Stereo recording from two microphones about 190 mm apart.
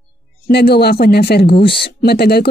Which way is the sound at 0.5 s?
60° left (ahead or behind).